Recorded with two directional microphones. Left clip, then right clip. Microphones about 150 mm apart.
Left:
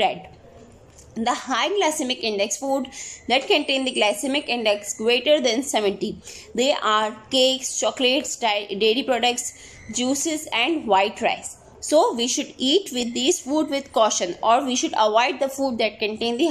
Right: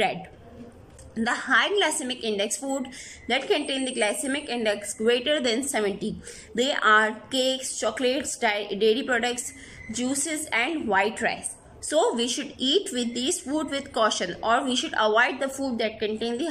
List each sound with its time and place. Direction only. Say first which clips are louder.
1.1 s a woman's voice: right 1 dB; 20° left (ahead or behind)